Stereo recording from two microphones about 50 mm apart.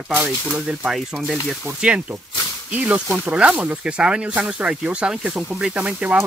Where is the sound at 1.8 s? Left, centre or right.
Right.